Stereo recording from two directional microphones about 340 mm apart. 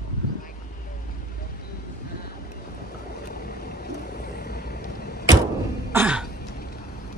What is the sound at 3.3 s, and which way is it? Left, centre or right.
Vehicle, left.